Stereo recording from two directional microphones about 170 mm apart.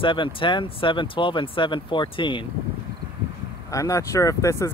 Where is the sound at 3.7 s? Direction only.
20° left (ahead or behind).